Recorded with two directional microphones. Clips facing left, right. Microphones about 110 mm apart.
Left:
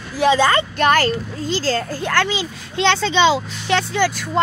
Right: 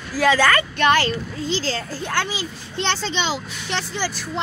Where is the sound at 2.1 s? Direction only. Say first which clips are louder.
Left 5 dB; 85° left; by 4.1 s 65° left (ahead or behind).